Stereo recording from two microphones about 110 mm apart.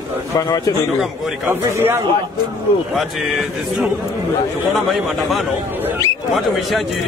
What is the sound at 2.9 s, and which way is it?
Speech, centre (ahead or behind).